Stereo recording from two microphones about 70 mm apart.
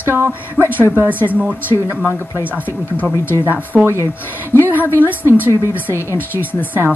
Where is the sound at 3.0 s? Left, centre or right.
Left.